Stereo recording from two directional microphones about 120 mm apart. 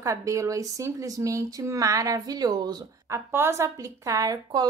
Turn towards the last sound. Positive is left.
turn(degrees=-30)  # may be behind; listen again after turning